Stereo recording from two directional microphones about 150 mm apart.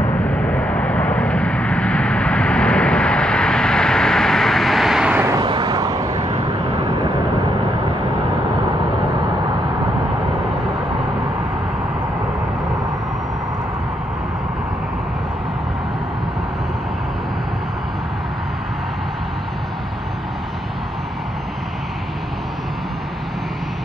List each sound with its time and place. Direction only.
0.2 s vehicle: 10° left (ahead or behind); by 5.3 s 5° right (ahead or behind)
5.3 s vehicle: 30° right (ahead or behind)
6.1 s vehicle: 50° right (ahead or behind)